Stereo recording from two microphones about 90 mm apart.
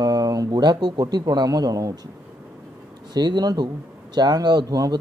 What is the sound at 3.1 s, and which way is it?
Speech, 50° right (ahead or behind).